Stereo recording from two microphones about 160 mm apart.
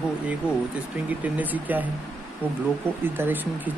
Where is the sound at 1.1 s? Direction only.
10° right (ahead or behind).